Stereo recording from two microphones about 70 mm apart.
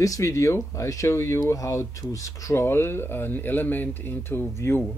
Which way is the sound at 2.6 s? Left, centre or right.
Left.